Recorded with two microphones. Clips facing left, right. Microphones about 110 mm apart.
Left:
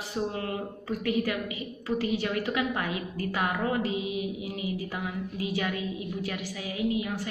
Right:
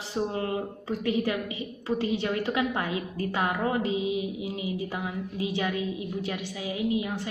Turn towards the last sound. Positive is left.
turn(degrees=-25)  # may be behind; listen again after turning